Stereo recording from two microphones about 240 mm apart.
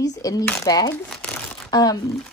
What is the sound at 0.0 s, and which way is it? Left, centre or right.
Speech, centre.